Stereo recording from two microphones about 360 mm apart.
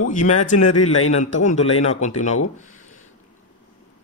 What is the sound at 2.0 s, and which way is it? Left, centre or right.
Speech, centre.